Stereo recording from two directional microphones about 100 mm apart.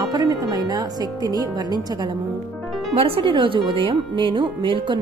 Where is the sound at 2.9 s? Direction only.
70° right (ahead or behind).